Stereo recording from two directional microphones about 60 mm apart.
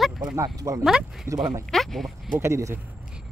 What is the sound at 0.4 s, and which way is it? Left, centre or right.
Speech, right.